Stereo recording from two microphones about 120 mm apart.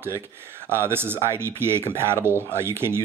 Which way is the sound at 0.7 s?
20° right (ahead or behind).